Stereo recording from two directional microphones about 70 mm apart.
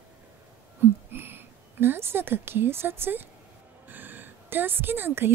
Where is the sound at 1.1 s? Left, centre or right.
Right.